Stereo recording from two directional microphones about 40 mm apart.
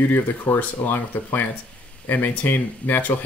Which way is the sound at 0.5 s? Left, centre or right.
Left.